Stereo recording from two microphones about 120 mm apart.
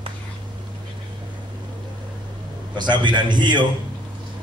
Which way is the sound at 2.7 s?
40° right (ahead or behind).